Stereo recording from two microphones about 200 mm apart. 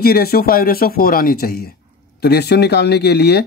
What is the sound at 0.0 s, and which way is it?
Speech, 50° left (ahead or behind).